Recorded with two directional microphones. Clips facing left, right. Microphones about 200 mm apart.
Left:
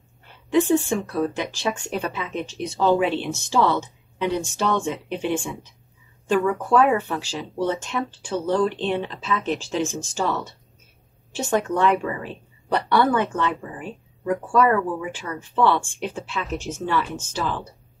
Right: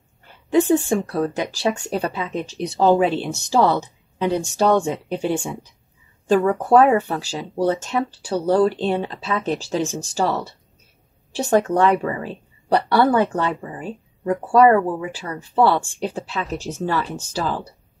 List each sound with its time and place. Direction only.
0.8 s a woman's voice: 45° right (ahead or behind)